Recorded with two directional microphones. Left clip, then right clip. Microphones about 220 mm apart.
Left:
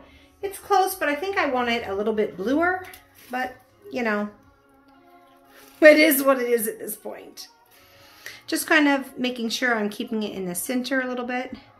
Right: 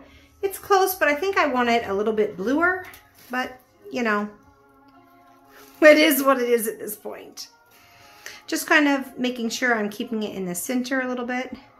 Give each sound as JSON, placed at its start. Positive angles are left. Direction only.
{"t": 0.4, "sound": "a woman's voice", "side_deg": -40}
{"t": 2.0, "sound": "speech", "side_deg": -10}
{"t": 5.8, "sound": "speech", "side_deg": -10}